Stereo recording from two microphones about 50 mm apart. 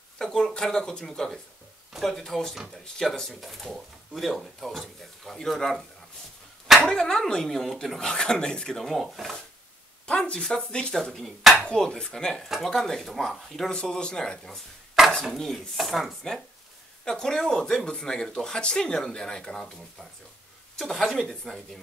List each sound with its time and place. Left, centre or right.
0.2 s speech: centre
6.9 s speech: centre
8.1 s speech: centre
9.0 s speech: centre
10.0 s speech: left
11.0 s speech: centre
12.4 s speech: centre
13.7 s speech: centre
17.0 s speech: centre